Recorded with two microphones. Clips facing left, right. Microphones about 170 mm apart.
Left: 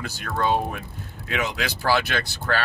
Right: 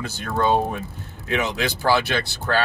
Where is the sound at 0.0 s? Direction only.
25° right (ahead or behind).